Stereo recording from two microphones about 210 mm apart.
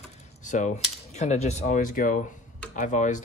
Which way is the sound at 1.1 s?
30° left (ahead or behind).